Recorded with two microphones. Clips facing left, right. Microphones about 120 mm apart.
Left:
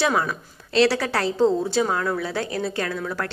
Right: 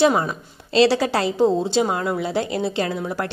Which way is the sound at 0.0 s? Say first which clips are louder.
Right 4 dB; 20° right (ahead or behind).